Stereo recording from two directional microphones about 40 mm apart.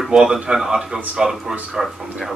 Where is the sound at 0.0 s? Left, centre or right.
Centre.